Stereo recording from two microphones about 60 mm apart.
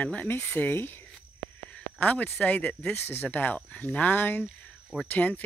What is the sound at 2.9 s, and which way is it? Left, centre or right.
Speech, left.